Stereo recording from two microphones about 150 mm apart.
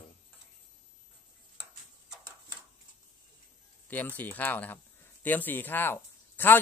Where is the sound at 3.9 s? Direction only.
10° left (ahead or behind).